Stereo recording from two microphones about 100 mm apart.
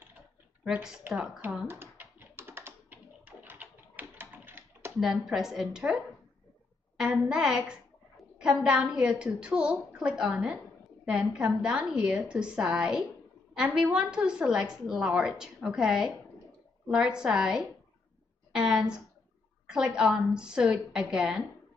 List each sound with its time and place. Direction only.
1.0 s a woman's voice: 10° right (ahead or behind)
1.7 s typing: 20° right (ahead or behind)
5.1 s a woman's voice: 5° right (ahead or behind)
7.0 s a woman's voice: 10° right (ahead or behind)
18.5 s a sound: 5° right (ahead or behind)
19.7 s a woman's voice: 5° right (ahead or behind)